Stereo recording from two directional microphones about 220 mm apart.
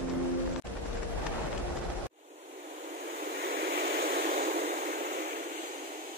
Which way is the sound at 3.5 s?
45° right (ahead or behind).